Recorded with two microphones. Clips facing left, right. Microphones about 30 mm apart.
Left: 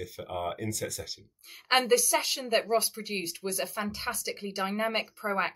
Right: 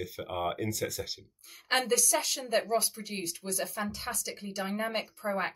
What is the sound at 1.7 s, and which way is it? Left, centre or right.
Speech, centre.